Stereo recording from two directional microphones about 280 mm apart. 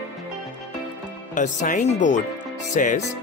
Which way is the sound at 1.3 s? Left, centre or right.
Left.